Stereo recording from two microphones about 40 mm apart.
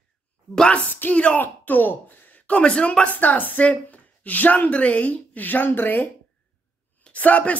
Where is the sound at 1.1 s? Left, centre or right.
Left.